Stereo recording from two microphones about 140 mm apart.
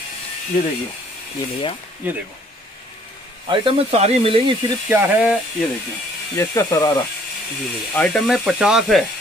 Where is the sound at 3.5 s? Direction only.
45° right (ahead or behind).